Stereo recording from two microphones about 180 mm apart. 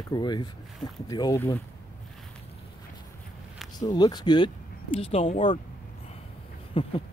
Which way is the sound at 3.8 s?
20° left (ahead or behind).